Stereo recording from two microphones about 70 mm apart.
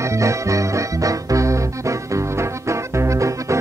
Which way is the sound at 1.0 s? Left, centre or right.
Right.